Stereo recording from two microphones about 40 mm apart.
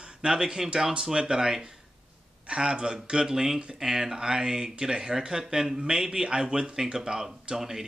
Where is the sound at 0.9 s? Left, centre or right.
Right.